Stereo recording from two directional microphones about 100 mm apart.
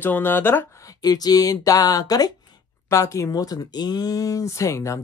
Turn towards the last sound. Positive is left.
turn(degrees=30)  # may be behind; listen again after turning